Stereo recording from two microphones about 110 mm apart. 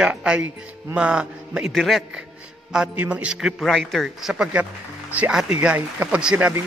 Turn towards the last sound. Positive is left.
turn(degrees=-10)  # may be behind; listen again after turning